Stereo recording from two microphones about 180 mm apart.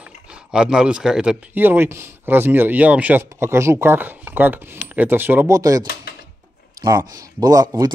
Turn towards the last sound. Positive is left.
turn(degrees=-20)  # may be behind; listen again after turning